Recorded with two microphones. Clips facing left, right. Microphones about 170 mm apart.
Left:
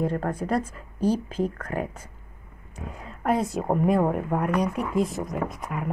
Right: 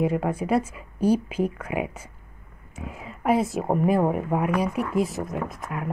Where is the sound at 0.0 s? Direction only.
10° right (ahead or behind).